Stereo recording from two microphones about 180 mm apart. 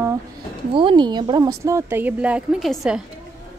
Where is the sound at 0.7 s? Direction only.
30° right (ahead or behind); by 3.0 s centre (ahead or behind).